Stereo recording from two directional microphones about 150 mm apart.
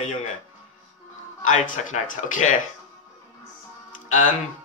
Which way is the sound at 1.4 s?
55° left (ahead or behind).